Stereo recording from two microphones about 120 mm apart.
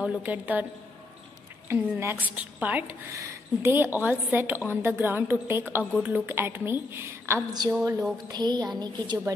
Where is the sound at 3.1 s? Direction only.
25° right (ahead or behind).